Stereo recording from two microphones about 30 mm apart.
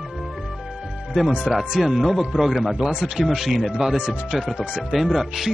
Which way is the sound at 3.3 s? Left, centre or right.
Centre.